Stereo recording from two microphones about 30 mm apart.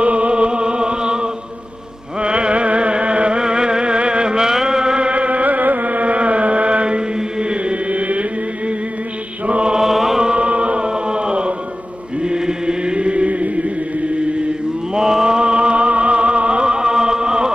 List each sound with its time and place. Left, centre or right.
0.0 s music: right
4.4 s music: right
7.2 s mantra: right
7.9 s music: right
9.5 s mantra: right
9.8 s chant: centre
10.3 s music: right
10.8 s chant: right
15.0 s music: right